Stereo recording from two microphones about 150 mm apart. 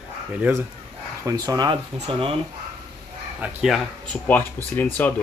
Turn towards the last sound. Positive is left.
turn(degrees=10)  # may be behind; listen again after turning